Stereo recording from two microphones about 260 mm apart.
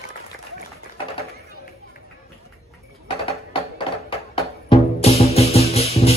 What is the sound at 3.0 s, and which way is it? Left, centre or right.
Music, left.